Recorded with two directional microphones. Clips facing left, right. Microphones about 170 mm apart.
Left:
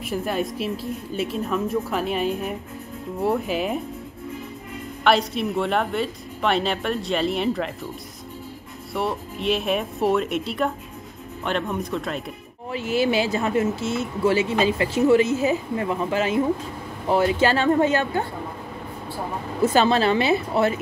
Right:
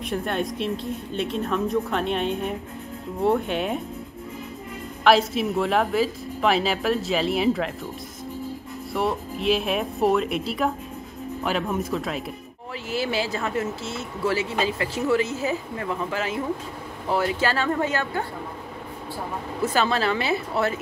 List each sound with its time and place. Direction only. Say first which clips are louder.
0.0 s speech: left 1 dB; 5° left (ahead or behind)
5.0 s speech: right 1 dB; centre (ahead or behind)
8.9 s speech: right 1 dB; centre (ahead or behind)
12.7 s speech: left 5 dB; 20° left (ahead or behind)
19.6 s speech: left 5 dB; 25° left (ahead or behind)